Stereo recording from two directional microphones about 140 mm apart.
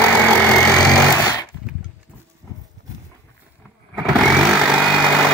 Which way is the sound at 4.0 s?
Centre (ahead or behind).